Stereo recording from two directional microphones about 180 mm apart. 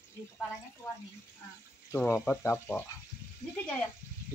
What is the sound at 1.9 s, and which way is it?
Speech, 15° left (ahead or behind).